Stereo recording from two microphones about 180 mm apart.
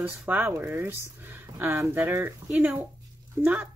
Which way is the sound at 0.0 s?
10° right (ahead or behind).